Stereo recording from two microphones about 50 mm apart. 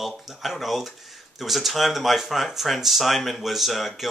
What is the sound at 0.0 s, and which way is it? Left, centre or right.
Speech, centre.